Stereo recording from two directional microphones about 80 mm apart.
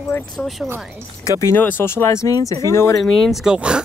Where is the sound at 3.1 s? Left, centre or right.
Centre.